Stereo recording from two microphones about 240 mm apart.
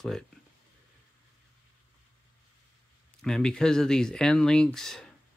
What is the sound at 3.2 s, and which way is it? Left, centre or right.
Speech, centre.